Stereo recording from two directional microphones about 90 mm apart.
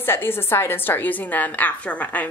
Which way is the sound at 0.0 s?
25° left (ahead or behind).